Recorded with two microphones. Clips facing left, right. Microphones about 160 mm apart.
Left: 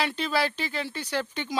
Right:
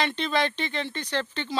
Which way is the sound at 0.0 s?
5° left (ahead or behind).